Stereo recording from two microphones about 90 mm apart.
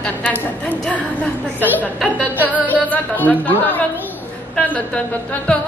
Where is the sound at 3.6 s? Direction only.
20° left (ahead or behind).